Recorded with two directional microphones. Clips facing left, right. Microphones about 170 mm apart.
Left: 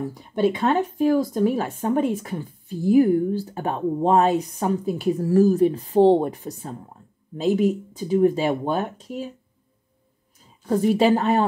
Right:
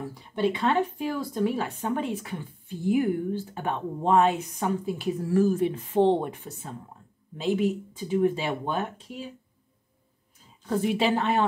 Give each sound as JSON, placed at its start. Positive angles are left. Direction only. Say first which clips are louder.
{"t": 0.3, "sound": "speech", "louder": "left 4 dB", "side_deg": 45}
{"t": 10.7, "sound": "speech", "louder": "left 6 dB", "side_deg": 40}